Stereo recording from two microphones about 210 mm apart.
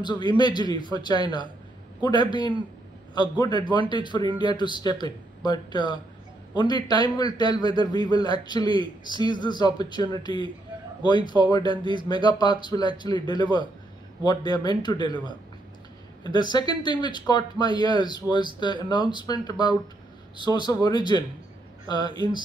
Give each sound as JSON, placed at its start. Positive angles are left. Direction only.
{"t": 0.0, "sound": "a man's voice", "side_deg": 20}
{"t": 16.3, "sound": "a man's voice", "side_deg": 20}
{"t": 20.6, "sound": "a man's voice", "side_deg": 20}